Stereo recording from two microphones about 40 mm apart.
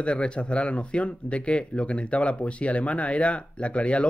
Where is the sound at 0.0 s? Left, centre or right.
Left.